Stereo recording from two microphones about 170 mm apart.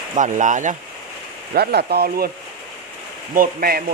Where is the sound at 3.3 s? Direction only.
60° right (ahead or behind).